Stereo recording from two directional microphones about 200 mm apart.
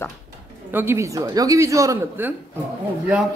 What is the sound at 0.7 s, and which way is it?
A man's voice, 15° right (ahead or behind).